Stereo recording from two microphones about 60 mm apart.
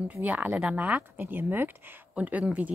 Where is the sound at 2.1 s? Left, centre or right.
Right.